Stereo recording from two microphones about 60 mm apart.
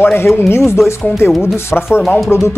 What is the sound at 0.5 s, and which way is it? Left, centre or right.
Speech, left.